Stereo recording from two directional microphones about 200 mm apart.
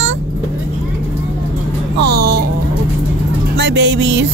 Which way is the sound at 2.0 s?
55° right (ahead or behind).